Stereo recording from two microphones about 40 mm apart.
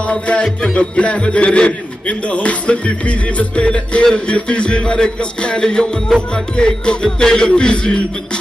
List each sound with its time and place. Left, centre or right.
0.1 s speech: left